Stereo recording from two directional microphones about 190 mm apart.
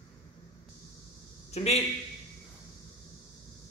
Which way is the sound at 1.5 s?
35° left (ahead or behind).